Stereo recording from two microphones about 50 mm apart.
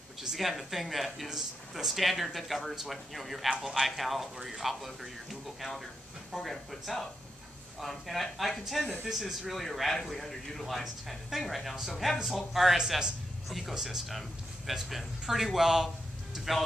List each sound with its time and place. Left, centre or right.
0.2 s speech: centre